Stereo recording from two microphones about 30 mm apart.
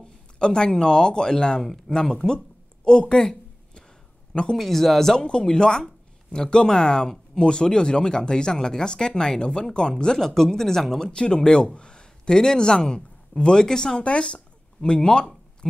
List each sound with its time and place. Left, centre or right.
0.0 s speech: left
3.2 s a sound: left
4.6 s speech: centre
5.4 s speech: left
10.2 s speech: centre
11.1 s a man's voice: left
13.9 s speech: left